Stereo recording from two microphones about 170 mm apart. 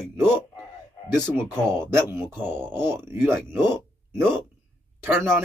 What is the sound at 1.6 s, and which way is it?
Speech, 5° left (ahead or behind).